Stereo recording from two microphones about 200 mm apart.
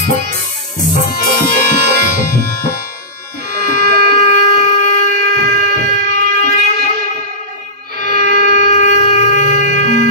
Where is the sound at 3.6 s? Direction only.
40° left (ahead or behind).